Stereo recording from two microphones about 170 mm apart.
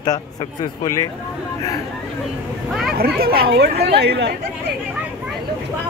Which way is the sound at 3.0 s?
65° right (ahead or behind).